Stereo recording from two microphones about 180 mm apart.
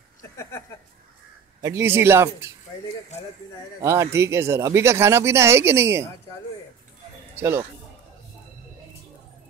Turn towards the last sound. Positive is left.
turn(degrees=-15)  # may be behind; listen again after turning